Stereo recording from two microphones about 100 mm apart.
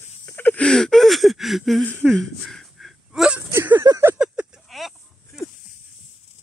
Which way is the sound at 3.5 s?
20° right (ahead or behind).